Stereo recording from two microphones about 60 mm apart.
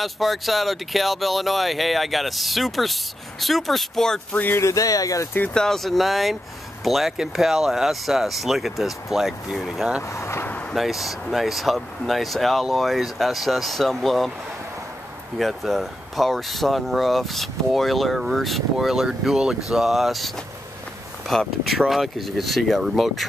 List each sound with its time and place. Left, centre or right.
0.0 s speech: centre
4.3 s a sound: left
4.6 s speech: left
5.5 s speech: centre
10.0 s speech: left
10.7 s speech: centre
15.3 s speech: centre